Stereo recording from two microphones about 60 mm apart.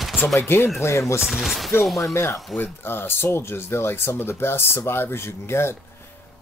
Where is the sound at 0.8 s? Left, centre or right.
Left.